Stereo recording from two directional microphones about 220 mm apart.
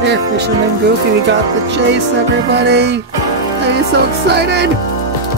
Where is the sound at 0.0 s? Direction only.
50° right (ahead or behind).